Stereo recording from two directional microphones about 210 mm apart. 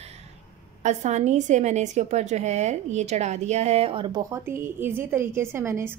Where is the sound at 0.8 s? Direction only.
35° right (ahead or behind).